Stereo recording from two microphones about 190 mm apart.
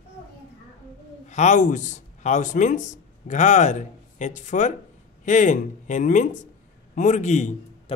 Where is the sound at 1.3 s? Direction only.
40° left (ahead or behind).